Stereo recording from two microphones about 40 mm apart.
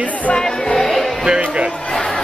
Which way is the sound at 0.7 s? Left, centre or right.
Centre.